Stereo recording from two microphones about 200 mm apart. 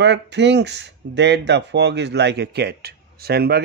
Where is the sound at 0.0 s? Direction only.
60° right (ahead or behind).